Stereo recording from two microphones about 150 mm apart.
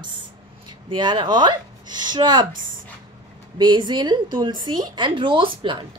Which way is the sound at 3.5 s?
30° right (ahead or behind).